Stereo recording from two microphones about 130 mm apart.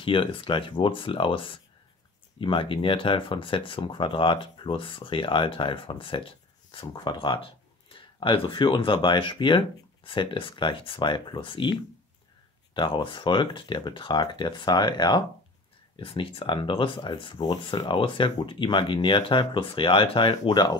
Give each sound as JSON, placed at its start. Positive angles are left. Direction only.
{"t": 0.0, "sound": "speech", "side_deg": 40}
{"t": 12.7, "sound": "speech", "side_deg": 40}